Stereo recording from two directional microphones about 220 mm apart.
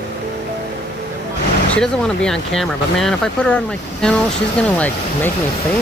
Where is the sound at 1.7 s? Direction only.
5° left (ahead or behind).